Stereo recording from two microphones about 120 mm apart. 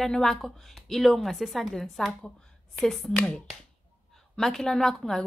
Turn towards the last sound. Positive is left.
turn(degrees=5)  # may be behind; listen again after turning